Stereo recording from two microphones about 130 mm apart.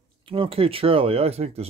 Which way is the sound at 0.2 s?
45° right (ahead or behind).